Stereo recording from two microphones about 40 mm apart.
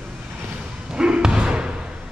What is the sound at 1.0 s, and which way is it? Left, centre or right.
Slam, right.